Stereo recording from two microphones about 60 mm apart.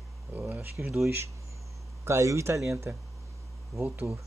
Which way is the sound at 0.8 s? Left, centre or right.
Right.